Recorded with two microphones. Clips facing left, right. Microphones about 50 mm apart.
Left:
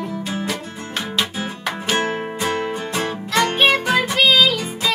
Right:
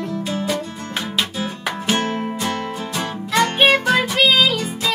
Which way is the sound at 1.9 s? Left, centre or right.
Left.